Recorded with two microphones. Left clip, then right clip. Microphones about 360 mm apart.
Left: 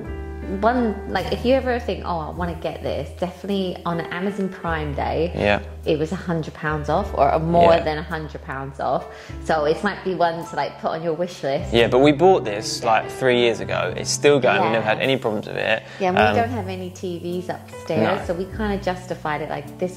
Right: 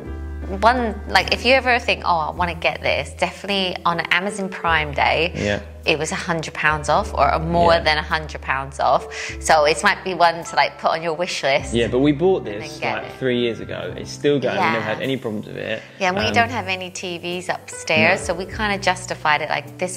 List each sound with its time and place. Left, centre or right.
0.6 s a woman's voice: right
11.7 s speech: left
16.0 s a woman's voice: right